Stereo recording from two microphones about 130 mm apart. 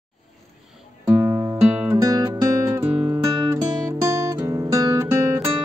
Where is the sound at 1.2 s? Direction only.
25° right (ahead or behind).